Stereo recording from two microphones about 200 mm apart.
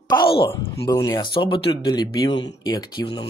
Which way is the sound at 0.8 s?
15° left (ahead or behind).